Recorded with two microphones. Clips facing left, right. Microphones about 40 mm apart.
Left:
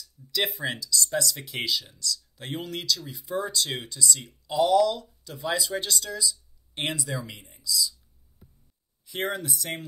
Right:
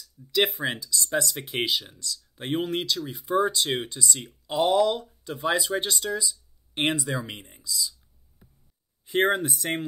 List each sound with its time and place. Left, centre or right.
0.3 s speech: right
9.0 s speech: right